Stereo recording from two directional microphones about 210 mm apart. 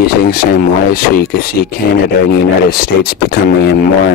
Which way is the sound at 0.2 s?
45° left (ahead or behind).